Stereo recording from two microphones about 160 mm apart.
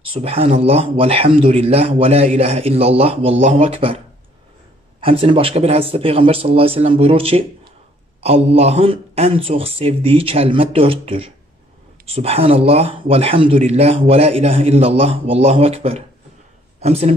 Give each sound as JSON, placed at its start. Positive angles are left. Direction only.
{"t": 0.1, "sound": "speech", "side_deg": -35}
{"t": 5.0, "sound": "speech", "side_deg": -35}